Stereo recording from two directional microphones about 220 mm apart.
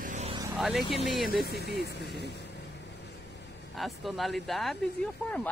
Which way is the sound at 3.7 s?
Centre (ahead or behind).